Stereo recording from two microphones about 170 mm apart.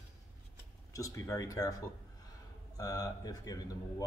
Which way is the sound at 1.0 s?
20° left (ahead or behind).